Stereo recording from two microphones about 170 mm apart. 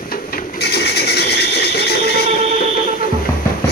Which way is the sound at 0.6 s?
70° left (ahead or behind).